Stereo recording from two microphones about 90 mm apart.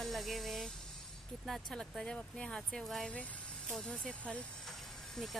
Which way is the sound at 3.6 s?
5° left (ahead or behind).